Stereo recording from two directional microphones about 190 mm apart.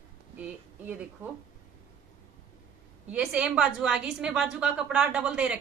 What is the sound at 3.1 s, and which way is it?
A woman's voice, 5° right (ahead or behind).